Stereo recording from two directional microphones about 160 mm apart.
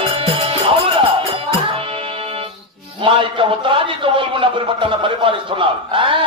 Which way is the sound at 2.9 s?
35° right (ahead or behind).